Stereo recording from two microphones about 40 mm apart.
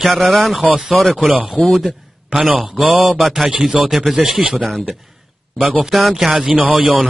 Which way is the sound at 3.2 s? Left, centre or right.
Centre.